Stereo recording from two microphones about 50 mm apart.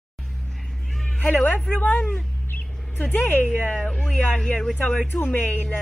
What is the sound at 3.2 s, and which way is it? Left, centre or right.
Speech, left.